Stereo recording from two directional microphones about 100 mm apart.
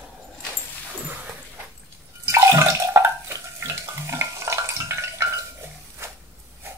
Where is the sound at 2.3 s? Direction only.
30° right (ahead or behind).